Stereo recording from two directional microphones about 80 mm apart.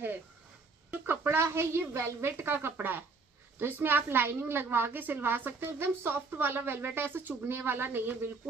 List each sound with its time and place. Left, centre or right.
1.0 s a woman's voice: right